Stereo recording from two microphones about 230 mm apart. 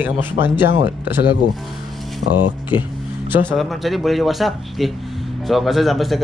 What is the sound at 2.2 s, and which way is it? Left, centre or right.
Speech, left.